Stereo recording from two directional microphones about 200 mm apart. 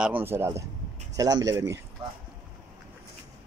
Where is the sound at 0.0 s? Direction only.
10° right (ahead or behind).